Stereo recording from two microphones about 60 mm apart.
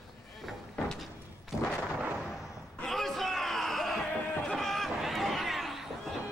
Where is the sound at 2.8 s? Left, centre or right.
Centre.